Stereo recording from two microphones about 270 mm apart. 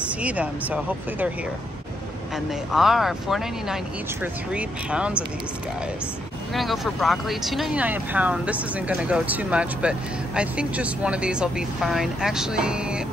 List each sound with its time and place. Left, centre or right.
0.2 s speech: centre
2.7 s speech: centre
6.5 s speech: centre